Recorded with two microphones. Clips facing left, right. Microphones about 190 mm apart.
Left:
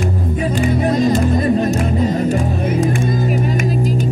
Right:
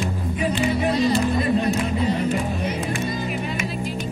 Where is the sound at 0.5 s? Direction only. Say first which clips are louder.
Left 5 dB; 45° left (ahead or behind).